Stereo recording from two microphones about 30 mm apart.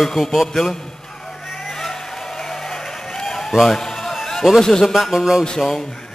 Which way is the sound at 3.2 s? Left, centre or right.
Centre.